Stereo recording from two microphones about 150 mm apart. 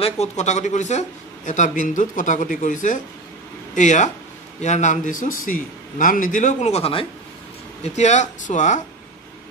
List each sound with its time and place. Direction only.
0.0 s speech: 50° left (ahead or behind)